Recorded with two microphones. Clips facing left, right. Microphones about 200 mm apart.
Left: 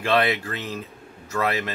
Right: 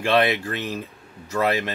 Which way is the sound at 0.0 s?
15° right (ahead or behind).